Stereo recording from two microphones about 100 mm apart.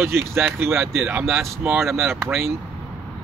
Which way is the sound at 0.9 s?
5° right (ahead or behind).